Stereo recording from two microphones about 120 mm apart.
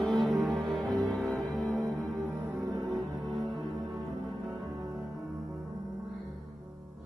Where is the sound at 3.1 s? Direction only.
Centre (ahead or behind).